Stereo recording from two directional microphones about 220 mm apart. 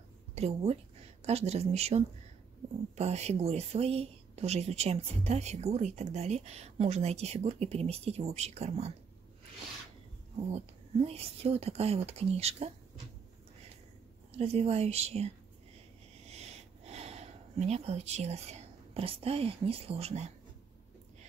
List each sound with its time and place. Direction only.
0.3 s a woman's voice: 30° right (ahead or behind)
10.5 s speech: 25° right (ahead or behind)
14.3 s speech: 30° right (ahead or behind)
16.3 s sniff: 30° right (ahead or behind)